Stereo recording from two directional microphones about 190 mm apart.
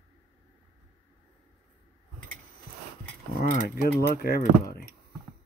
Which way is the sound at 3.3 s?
40° left (ahead or behind).